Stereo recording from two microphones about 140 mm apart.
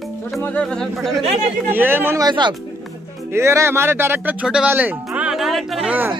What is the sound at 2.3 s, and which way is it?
Speech, 35° right (ahead or behind).